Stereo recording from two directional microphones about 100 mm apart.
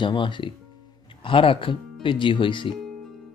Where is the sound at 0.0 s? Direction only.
55° left (ahead or behind).